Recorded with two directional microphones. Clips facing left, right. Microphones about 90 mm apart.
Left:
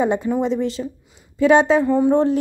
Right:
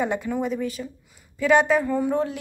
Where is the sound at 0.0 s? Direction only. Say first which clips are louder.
Left 6 dB; 25° left (ahead or behind).